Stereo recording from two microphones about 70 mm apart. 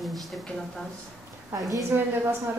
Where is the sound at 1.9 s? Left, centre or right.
Right.